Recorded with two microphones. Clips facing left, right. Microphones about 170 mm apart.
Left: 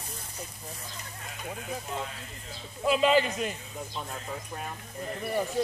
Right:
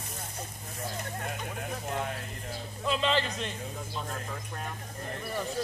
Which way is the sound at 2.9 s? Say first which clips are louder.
Left 5 dB; 5° left (ahead or behind).